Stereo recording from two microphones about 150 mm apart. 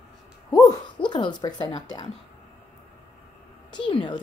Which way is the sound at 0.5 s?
25° left (ahead or behind).